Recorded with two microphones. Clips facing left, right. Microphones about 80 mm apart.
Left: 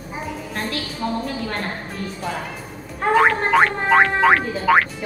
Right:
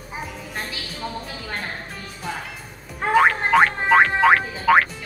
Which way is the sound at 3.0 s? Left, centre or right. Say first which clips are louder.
Left 1 dB; centre.